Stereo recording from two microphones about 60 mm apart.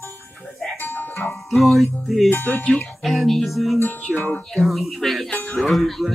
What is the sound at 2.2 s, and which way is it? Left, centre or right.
Speech, left.